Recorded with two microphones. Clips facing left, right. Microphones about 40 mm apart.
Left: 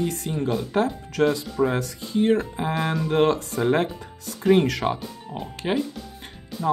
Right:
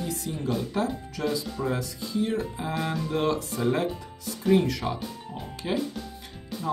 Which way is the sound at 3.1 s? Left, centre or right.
Left.